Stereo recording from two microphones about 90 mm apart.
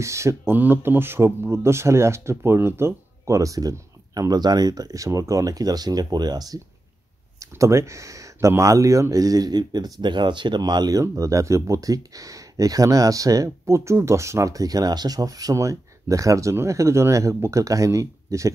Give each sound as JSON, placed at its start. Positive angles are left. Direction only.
{"t": 0.0, "sound": "speech", "side_deg": -35}
{"t": 7.3, "sound": "speech", "side_deg": -35}